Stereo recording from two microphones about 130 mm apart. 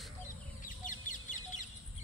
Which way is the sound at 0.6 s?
85° left.